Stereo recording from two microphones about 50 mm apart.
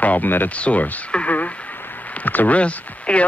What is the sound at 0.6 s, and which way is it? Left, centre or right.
Speech, left.